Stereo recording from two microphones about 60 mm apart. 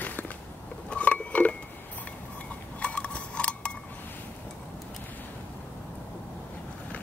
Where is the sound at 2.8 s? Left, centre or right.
Centre.